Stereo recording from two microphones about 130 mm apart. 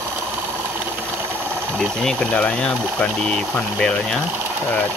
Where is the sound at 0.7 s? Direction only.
15° right (ahead or behind).